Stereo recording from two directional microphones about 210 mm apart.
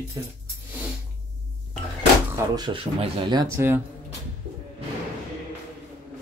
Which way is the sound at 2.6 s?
20° right (ahead or behind).